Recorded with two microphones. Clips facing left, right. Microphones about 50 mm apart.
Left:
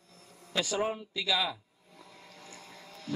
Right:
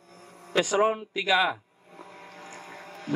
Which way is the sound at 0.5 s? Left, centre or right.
Right.